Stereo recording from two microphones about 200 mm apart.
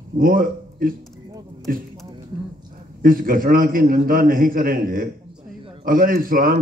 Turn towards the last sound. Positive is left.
turn(degrees=-45)  # may be behind; listen again after turning